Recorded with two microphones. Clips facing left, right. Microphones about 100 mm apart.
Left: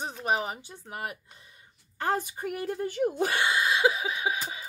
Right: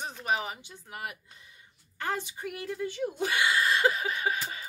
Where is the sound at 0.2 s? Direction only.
40° left (ahead or behind).